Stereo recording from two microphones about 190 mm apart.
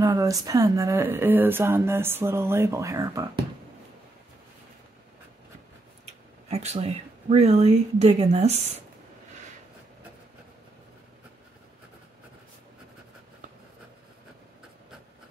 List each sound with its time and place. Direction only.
0.0 s speech: 20° right (ahead or behind)
6.5 s speech: 35° right (ahead or behind)